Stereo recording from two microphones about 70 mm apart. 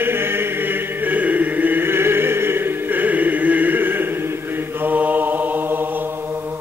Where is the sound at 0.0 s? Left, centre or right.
Right.